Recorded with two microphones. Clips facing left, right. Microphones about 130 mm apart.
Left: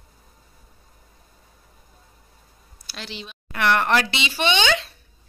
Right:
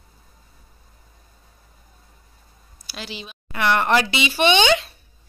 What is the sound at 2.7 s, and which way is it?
A woman's voice, 5° right (ahead or behind).